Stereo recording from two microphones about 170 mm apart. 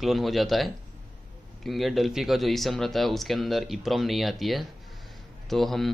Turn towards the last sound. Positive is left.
turn(degrees=0)  # may be behind; listen again after turning